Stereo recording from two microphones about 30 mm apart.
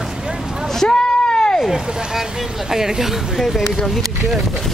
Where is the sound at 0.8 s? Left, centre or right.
Left.